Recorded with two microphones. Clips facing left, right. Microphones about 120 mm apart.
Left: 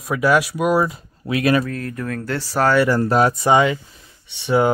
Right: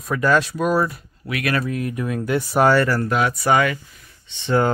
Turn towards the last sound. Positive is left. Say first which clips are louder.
# left 2 dB
turn(degrees=15)  # may be behind; listen again after turning